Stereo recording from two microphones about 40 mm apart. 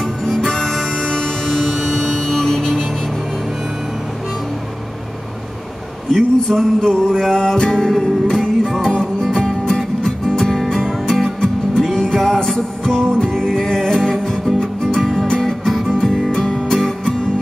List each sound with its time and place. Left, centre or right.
0.2 s music: centre
1.1 s music: centre
1.5 s music: centre
6.1 s music: centre
9.5 s music: centre
10.0 s music: centre
16.7 s music: centre